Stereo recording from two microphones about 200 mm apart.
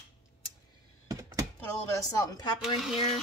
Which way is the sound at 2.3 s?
20° left (ahead or behind).